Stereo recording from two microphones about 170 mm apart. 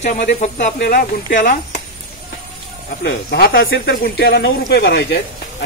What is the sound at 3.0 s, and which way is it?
Speech, 70° left (ahead or behind).